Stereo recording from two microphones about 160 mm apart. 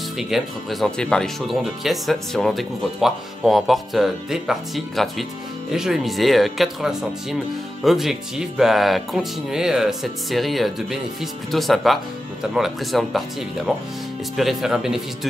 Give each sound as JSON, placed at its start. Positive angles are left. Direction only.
{"t": 0.2, "sound": "speech", "side_deg": 0}